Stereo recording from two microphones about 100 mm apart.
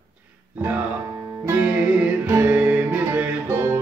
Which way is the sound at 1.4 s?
20° right (ahead or behind).